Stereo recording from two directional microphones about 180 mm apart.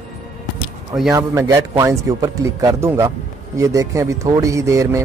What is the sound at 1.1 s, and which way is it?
Speech, 15° right (ahead or behind).